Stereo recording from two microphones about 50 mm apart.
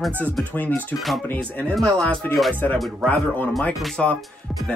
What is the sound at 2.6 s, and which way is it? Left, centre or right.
Speech, left.